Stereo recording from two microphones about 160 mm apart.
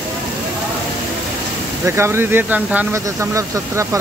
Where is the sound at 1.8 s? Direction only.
15° right (ahead or behind).